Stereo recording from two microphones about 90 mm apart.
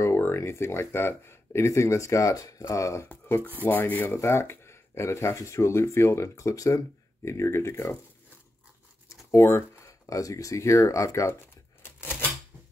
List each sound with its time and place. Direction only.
0.0 s speech: 30° left (ahead or behind)
3.1 s speech: 20° left (ahead or behind)
9.3 s speech: 30° left (ahead or behind)
11.8 s a sound: 25° left (ahead or behind)